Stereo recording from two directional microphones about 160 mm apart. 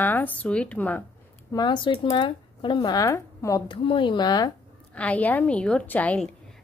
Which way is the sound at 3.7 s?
30° left (ahead or behind).